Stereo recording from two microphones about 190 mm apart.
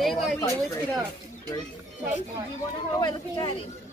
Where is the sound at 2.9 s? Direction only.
20° left (ahead or behind).